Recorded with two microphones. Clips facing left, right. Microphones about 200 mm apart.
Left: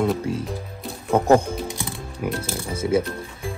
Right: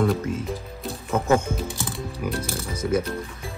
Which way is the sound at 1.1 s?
35° left (ahead or behind).